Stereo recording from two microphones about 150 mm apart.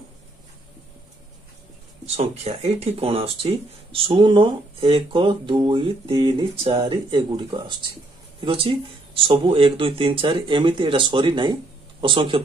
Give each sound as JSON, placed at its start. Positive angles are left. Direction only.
{"t": 2.0, "sound": "speech", "side_deg": -45}